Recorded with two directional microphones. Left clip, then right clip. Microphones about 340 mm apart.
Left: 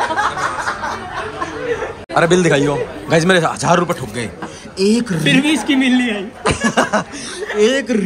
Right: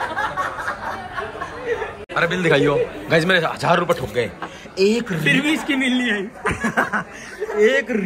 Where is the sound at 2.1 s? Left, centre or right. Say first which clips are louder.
Left 4 dB; centre.